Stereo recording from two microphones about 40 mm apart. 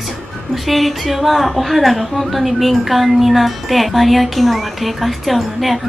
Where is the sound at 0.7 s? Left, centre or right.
Centre.